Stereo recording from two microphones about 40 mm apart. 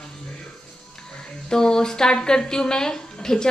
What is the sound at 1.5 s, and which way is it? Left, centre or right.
A woman's voice, centre.